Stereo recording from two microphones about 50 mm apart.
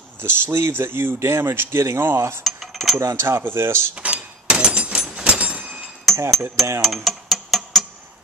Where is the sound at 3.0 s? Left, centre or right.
Right.